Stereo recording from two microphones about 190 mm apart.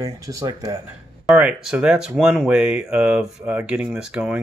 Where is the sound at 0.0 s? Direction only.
15° right (ahead or behind).